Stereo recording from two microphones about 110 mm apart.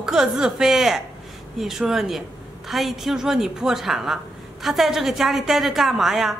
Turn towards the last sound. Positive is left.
turn(degrees=-5)  # may be behind; listen again after turning